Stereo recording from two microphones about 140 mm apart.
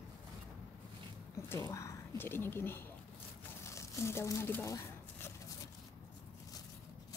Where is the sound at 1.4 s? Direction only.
20° left (ahead or behind).